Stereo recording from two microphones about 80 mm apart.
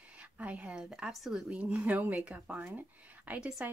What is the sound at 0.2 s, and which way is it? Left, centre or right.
Speech, centre.